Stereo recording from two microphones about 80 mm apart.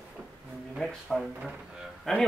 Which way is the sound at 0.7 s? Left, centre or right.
Centre.